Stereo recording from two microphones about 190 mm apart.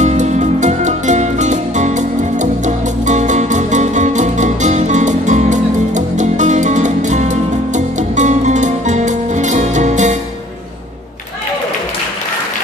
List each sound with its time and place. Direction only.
0.0 s music: 40° right (ahead or behind)